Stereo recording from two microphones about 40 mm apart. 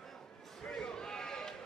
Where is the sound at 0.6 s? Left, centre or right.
Centre.